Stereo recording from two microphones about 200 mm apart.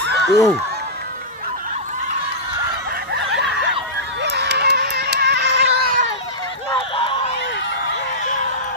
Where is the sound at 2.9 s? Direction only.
55° right (ahead or behind).